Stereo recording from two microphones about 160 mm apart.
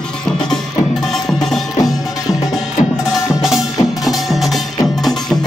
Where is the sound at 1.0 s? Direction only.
Centre (ahead or behind).